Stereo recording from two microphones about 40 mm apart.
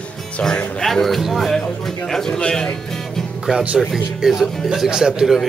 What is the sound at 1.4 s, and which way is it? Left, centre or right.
Music, centre.